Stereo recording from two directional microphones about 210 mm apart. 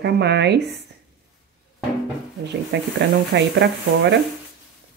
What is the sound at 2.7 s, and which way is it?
Speech, 55° right (ahead or behind).